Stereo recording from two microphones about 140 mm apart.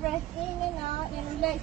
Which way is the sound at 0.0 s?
Centre (ahead or behind).